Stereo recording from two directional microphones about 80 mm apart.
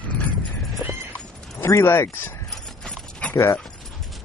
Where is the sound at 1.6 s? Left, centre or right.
Left.